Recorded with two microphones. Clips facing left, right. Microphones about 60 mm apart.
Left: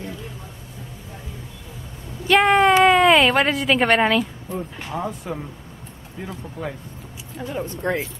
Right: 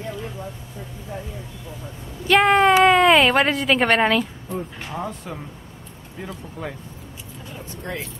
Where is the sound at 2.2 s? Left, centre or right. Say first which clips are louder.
Even; centre.